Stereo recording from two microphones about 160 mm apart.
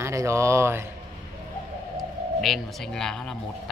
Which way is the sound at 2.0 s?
Centre (ahead or behind).